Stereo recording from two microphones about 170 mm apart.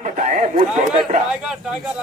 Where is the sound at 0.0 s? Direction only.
45° right (ahead or behind).